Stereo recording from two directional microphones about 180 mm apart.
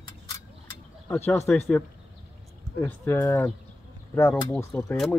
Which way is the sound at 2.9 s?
10° left (ahead or behind).